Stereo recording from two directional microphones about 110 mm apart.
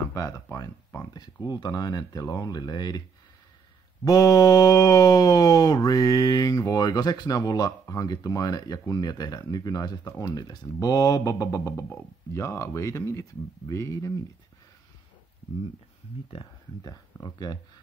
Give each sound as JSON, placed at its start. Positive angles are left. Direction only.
{"t": 0.1, "sound": "a sound", "side_deg": 30}
{"t": 1.1, "sound": "mantra", "side_deg": 40}
{"t": 4.0, "sound": "mantra", "side_deg": 35}
{"t": 10.4, "sound": "mantra", "side_deg": 40}
{"t": 12.3, "sound": "speech", "side_deg": 25}
{"t": 16.8, "sound": "mantra", "side_deg": 35}